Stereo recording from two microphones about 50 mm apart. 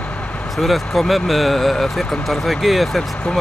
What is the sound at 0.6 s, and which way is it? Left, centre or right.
Speech, centre.